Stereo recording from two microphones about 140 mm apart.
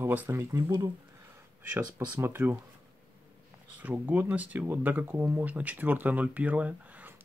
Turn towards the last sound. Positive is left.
turn(degrees=-10)  # may be behind; listen again after turning